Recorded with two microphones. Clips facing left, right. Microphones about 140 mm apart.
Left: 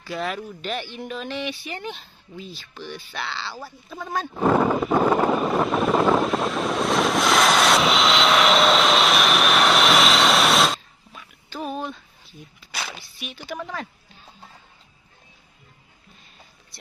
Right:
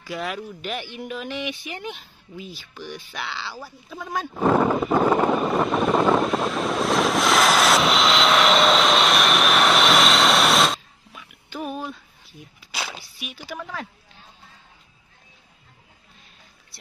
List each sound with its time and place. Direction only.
0.0 s speech: 10° right (ahead or behind)
4.3 s vehicle: centre (ahead or behind)
11.7 s a sound: 5° right (ahead or behind)
12.5 s speech: 10° right (ahead or behind)
13.6 s speech: 5° left (ahead or behind)